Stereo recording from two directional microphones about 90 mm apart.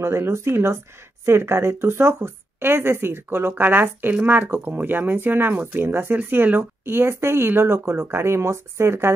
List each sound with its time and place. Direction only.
0.0 s speech: 30° right (ahead or behind)